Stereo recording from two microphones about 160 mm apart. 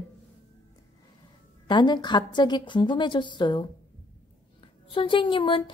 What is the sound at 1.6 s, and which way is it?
A woman's voice, 30° left (ahead or behind).